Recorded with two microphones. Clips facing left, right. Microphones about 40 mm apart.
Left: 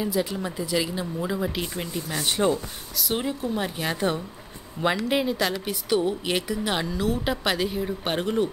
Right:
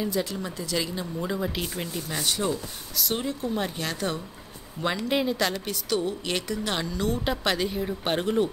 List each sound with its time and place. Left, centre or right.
0.0 s speech: centre
2.2 s speech: left
3.2 s speech: centre
3.8 s speech: centre
5.0 s a woman's voice: centre
5.7 s a woman's voice: centre